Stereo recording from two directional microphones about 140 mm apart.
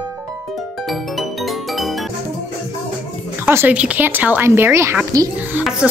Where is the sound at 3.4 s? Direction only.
15° right (ahead or behind).